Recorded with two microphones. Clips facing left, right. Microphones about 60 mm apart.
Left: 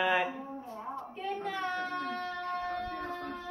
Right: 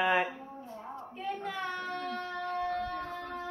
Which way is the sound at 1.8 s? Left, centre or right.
Centre.